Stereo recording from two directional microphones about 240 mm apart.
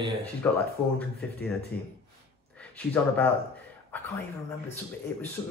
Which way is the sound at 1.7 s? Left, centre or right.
Centre.